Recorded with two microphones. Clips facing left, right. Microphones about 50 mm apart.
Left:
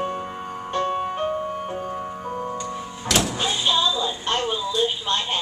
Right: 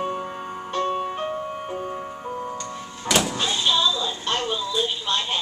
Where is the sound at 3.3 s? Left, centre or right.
Centre.